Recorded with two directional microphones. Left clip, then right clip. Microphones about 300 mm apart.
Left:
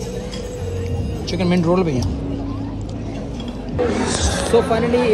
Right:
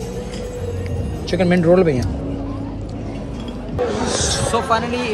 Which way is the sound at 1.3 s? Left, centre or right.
Centre.